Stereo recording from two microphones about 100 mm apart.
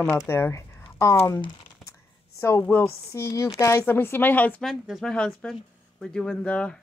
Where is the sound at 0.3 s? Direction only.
25° left (ahead or behind).